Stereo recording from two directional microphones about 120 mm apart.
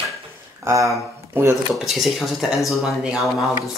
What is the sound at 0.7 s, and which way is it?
Dishes, 25° right (ahead or behind).